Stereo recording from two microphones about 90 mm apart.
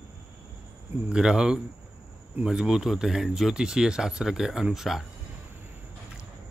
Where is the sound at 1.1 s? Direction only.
10° right (ahead or behind).